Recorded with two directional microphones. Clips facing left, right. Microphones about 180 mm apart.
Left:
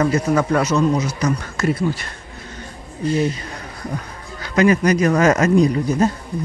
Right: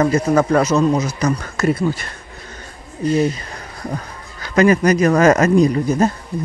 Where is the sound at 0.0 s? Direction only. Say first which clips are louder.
Right 2 dB; 40° right (ahead or behind).